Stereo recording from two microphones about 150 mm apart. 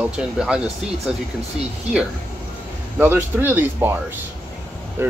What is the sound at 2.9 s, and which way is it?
Speech, 15° right (ahead or behind).